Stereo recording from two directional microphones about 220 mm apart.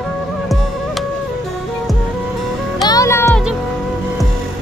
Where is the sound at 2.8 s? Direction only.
15° left (ahead or behind).